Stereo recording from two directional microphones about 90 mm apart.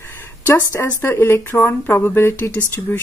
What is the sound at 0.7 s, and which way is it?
Speech, 30° left (ahead or behind).